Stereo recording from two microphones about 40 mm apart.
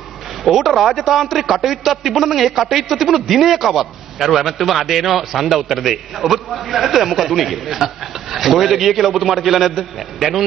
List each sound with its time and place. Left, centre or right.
0.4 s a man's voice: centre